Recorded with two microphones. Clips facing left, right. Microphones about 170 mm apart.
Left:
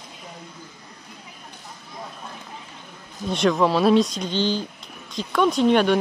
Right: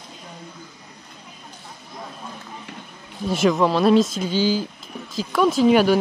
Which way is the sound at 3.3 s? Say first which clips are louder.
Right 1 dB; 5° right (ahead or behind).